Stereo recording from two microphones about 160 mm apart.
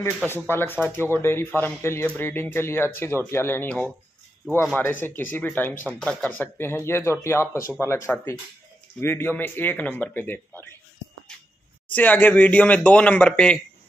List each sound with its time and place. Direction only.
0.5 s speech: 15° left (ahead or behind)
11.9 s speech: 10° left (ahead or behind)